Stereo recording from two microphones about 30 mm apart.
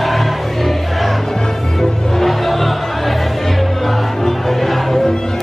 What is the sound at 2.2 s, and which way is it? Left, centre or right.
Music, centre.